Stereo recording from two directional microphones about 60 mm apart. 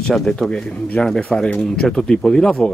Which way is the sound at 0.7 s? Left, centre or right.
Left.